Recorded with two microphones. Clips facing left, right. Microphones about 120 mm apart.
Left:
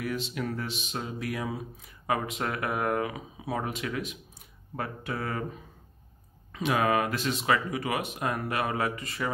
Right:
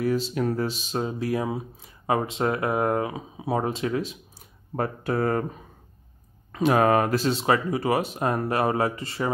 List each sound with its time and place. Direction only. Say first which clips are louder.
0.0 s speech: right 8 dB; 35° right (ahead or behind)
6.5 s speech: right 6 dB; 40° right (ahead or behind)